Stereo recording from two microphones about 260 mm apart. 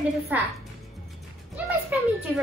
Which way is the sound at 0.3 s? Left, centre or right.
Centre.